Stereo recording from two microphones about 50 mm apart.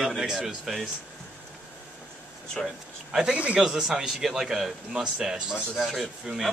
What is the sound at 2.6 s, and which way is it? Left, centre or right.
A man's voice, centre.